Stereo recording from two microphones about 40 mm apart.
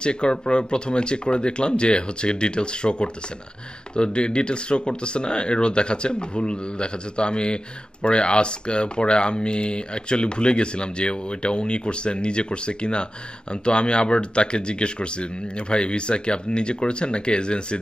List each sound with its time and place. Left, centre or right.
0.0 s speech: left